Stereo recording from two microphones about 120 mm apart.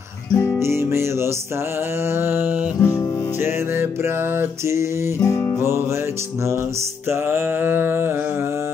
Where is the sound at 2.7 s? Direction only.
25° left (ahead or behind).